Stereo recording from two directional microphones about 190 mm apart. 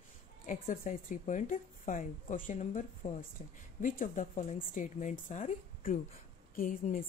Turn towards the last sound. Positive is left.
turn(degrees=45)  # may be behind; listen again after turning